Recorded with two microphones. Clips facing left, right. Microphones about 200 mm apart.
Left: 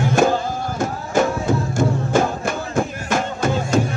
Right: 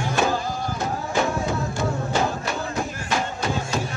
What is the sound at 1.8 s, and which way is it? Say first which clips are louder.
Music: left 6 dB; 50° left (ahead or behind).